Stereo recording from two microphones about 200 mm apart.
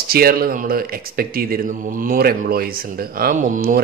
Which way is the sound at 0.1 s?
50° right (ahead or behind).